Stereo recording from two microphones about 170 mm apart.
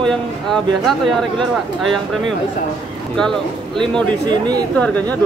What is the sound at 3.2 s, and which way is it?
A man's voice, 5° left (ahead or behind).